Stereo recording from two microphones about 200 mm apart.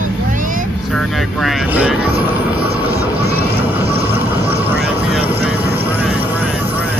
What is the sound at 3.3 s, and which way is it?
Music, 10° right (ahead or behind).